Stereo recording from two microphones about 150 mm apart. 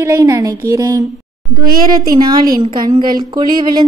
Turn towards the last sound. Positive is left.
turn(degrees=-30)  # may be behind; listen again after turning